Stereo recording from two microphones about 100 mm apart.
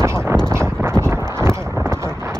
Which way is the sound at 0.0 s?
25° right (ahead or behind).